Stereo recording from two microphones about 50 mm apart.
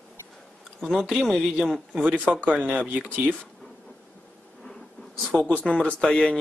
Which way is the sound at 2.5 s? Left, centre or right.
Right.